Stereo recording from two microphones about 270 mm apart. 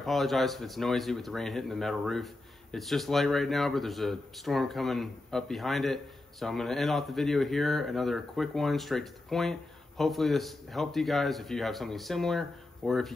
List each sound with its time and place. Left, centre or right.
0.0 s speech: centre